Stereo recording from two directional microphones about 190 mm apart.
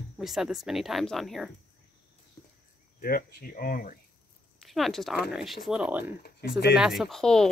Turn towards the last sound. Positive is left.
turn(degrees=5)  # may be behind; listen again after turning